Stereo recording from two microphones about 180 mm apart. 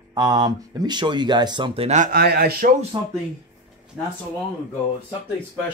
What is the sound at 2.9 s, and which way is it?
Speech, 25° right (ahead or behind).